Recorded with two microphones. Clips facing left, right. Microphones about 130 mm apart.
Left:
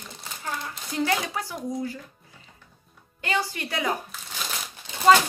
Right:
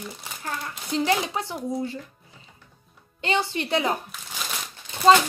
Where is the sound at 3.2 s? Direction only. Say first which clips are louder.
Right 3 dB; 25° right (ahead or behind).